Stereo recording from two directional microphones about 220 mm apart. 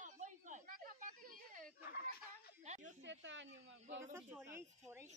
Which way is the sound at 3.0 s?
55° right (ahead or behind).